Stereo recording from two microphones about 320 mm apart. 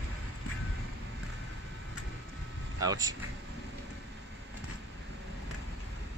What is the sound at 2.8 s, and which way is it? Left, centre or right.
Speech, centre.